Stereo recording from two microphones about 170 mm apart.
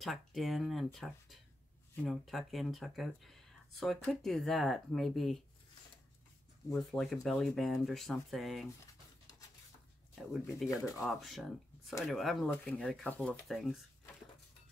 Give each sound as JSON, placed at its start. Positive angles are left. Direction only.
{"t": 0.0, "sound": "speech", "side_deg": 0}
{"t": 6.7, "sound": "speech", "side_deg": 0}
{"t": 10.1, "sound": "speech", "side_deg": 0}
{"t": 10.8, "sound": "speech", "side_deg": 20}
{"t": 11.1, "sound": "speech", "side_deg": 0}